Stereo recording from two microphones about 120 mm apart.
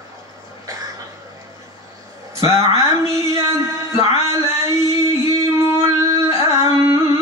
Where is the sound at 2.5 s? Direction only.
25° right (ahead or behind).